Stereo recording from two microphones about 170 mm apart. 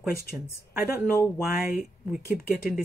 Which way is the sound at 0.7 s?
5° right (ahead or behind).